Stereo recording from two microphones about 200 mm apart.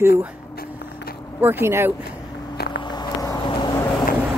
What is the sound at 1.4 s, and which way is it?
Speech, 10° right (ahead or behind).